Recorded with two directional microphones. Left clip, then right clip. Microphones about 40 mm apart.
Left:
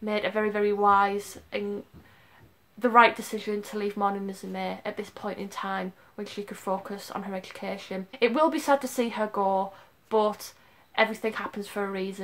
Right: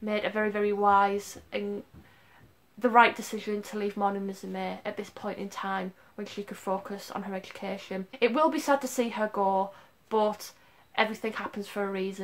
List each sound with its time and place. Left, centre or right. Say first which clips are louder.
0.0 s speech: left 2 dB; left
2.8 s speech: left 2 dB; left